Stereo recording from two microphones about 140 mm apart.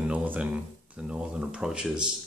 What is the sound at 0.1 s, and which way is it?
Speech, 10° right (ahead or behind).